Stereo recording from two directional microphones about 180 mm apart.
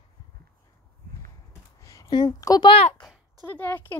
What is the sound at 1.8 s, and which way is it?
A woman's voice, 20° left (ahead or behind).